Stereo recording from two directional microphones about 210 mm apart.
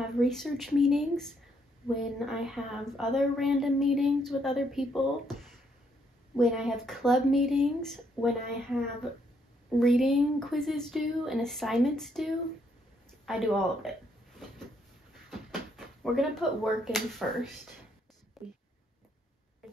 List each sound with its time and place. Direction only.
0.0 s a woman's voice: centre (ahead or behind)
9.8 s a woman's voice: centre (ahead or behind)
15.3 s speech: centre (ahead or behind)